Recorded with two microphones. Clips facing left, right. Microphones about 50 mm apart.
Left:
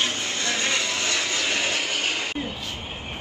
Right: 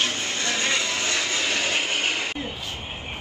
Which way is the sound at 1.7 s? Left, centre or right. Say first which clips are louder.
Right 1 dB; right.